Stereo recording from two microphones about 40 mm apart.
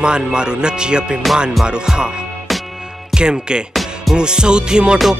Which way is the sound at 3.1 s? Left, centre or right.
Right.